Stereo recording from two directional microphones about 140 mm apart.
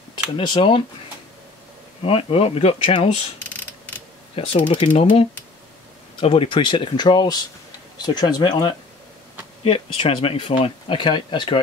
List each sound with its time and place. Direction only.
0.4 s speech: 35° left (ahead or behind)
2.0 s speech: 45° left (ahead or behind)
4.4 s speech: 40° left (ahead or behind)